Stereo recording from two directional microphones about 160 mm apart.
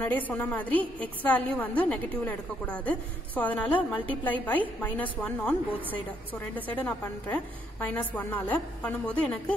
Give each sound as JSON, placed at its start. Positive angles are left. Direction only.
{"t": 0.0, "sound": "a woman's voice", "side_deg": 10}